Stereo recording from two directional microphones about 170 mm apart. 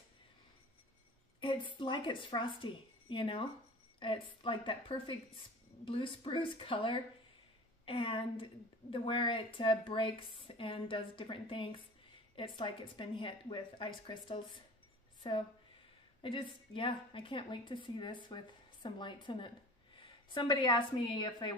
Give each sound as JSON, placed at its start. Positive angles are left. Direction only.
{"t": 1.4, "sound": "a woman's voice", "side_deg": 30}